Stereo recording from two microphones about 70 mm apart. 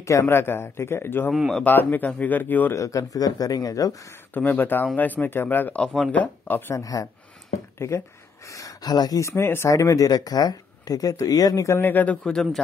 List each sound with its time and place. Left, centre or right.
0.0 s speech: left
0.3 s a man's voice: left
2.7 s speech: left
4.3 s speech: left
6.7 s speech: left
7.8 s a man's voice: left
8.5 s speech: left
9.3 s a man's voice: left
9.7 s speech: left
11.6 s speech: left
12.2 s a man's voice: centre